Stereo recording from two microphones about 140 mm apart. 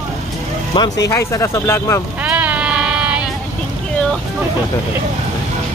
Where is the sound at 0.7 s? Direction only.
25° left (ahead or behind).